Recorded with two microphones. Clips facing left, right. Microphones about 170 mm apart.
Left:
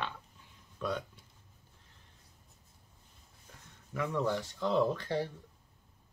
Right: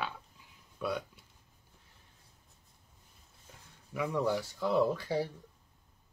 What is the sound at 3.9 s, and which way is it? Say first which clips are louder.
Speech: right 1 dB; 10° right (ahead or behind).